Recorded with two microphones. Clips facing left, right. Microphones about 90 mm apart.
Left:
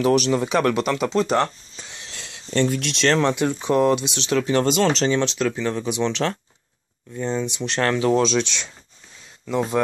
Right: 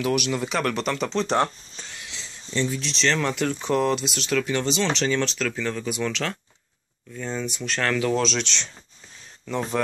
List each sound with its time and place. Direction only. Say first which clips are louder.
0.0 s speech: left 6 dB; 35° left (ahead or behind); by 1.4 s 5° left (ahead or behind)
2.1 s a sound: left 5 dB; 65° left (ahead or behind)
3.3 s speech: left 4 dB; 20° left (ahead or behind)
4.4 s speech: left 6 dB; 35° left (ahead or behind)
4.6 s speech: left 5 dB; 50° left (ahead or behind)
5.0 s speech: left 4 dB; 20° left (ahead or behind)
9.5 s speech: left 4 dB; 15° left (ahead or behind)